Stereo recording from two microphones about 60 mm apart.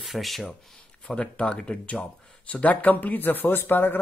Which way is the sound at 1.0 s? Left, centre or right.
Centre.